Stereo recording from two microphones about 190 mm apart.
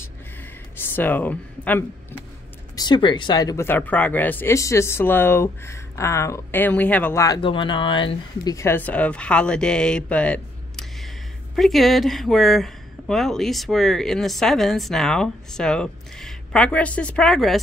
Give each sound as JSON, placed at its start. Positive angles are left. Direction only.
{"t": 0.0, "sound": "a sound", "side_deg": 10}
{"t": 2.7, "sound": "speech", "side_deg": 20}
{"t": 7.2, "sound": "speech", "side_deg": 25}